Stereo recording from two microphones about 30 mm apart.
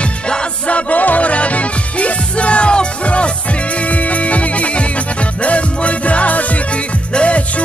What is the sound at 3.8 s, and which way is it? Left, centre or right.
Music, left.